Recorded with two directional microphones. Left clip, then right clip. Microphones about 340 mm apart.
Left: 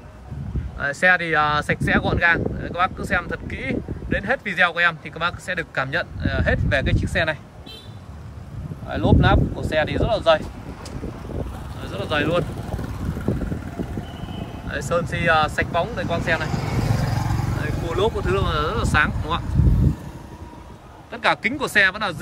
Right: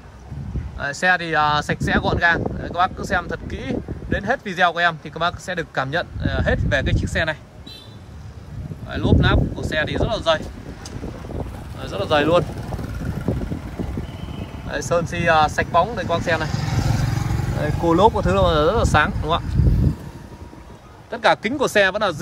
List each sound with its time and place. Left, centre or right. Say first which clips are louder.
0.7 s speech: left 1 dB; centre
8.8 s speech: left 1 dB; centre
11.3 s vehicle: even; centre
14.7 s speech: right 2 dB; centre
16.4 s vehicle: even; centre
17.9 s speech: right 5 dB; centre
21.1 s speech: right 3 dB; centre